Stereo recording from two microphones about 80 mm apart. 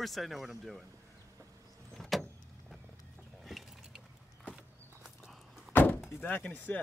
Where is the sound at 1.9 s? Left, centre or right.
Centre.